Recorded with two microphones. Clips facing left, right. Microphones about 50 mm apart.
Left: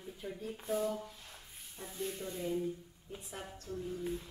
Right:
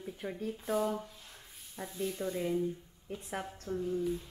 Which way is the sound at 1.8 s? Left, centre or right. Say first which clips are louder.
Right 6 dB; right.